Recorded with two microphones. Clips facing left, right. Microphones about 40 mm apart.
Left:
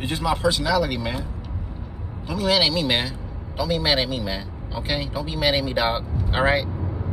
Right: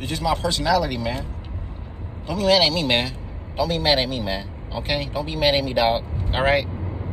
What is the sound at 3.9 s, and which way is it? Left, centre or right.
Speech, right.